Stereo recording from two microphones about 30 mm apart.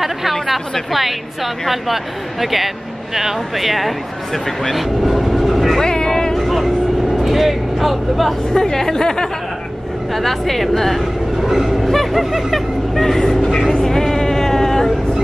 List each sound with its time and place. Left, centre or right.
0.9 s speech: centre
4.7 s vehicle: centre
5.8 s vehicle: left
6.3 s vehicle: centre
7.2 s speech: centre
8.6 s speech: centre
10.1 s speech: centre
12.5 s speech: centre
13.3 s speech: centre
13.8 s sheep: centre